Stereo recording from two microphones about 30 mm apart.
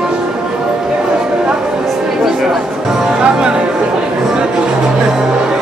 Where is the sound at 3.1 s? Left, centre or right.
Right.